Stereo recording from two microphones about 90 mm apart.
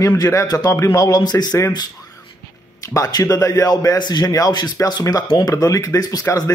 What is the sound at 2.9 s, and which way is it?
A man's voice, 40° left (ahead or behind).